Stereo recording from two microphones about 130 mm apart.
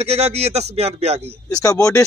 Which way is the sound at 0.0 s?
55° right (ahead or behind).